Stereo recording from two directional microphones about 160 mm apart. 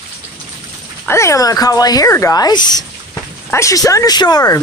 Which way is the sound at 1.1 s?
20° left (ahead or behind).